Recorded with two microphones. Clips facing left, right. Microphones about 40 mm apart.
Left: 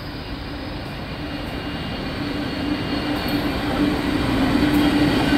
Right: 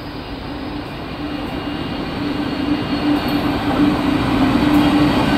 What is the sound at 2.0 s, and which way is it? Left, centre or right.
Train, right.